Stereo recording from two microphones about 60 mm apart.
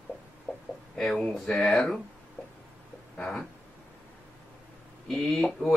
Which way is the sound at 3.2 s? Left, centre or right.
Centre.